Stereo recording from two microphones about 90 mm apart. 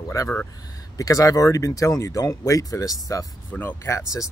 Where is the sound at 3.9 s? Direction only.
35° left (ahead or behind).